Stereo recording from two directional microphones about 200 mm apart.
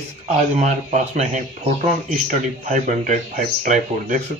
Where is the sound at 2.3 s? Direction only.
40° right (ahead or behind).